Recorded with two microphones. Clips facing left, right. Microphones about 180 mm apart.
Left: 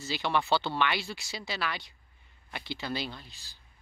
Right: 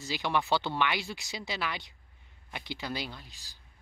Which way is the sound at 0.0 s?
15° right (ahead or behind).